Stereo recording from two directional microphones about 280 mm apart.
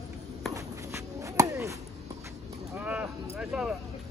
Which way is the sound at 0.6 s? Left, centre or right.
Centre.